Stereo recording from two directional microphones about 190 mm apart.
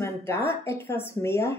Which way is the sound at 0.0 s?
15° left (ahead or behind).